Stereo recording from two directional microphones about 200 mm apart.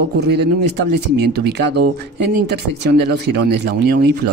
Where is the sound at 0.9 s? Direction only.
55° right (ahead or behind).